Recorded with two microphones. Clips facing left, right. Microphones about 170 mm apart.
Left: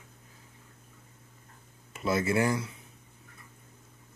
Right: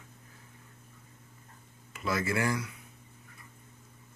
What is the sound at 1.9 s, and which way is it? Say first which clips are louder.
Speech: left 4 dB; 25° left (ahead or behind).